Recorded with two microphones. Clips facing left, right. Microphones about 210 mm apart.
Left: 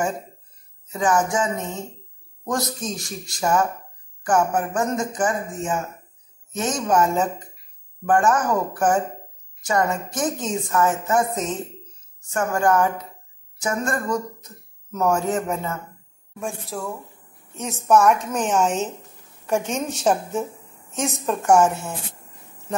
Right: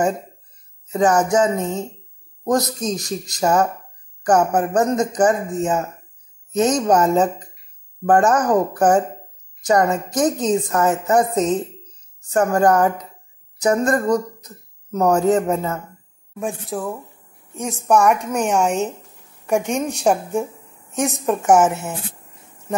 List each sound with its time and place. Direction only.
0.9 s a woman's voice: 40° right (ahead or behind)
16.7 s a woman's voice: 15° right (ahead or behind)
21.5 s speech: 20° right (ahead or behind)